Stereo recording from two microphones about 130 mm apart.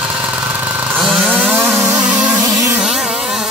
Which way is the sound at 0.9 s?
Centre (ahead or behind).